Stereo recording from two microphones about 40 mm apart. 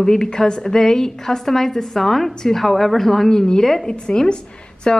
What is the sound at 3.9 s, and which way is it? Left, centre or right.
Speech, left.